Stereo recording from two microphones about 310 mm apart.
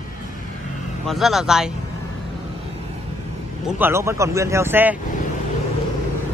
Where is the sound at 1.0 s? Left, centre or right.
Centre.